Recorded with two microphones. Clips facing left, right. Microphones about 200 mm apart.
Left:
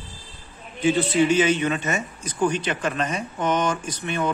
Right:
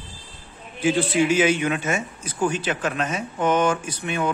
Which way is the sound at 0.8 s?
10° right (ahead or behind).